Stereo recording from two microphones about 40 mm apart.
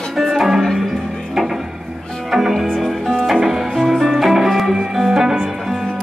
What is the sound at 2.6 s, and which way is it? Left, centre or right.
Music, centre.